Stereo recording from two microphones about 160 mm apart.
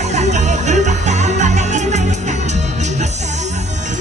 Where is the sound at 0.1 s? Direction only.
45° right (ahead or behind).